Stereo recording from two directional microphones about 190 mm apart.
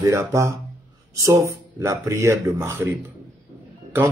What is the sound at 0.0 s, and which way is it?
Speech, 15° right (ahead or behind).